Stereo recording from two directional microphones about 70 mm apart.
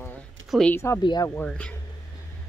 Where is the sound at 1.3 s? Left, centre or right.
Centre.